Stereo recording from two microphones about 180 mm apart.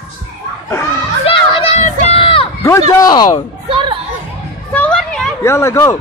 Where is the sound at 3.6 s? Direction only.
30° right (ahead or behind).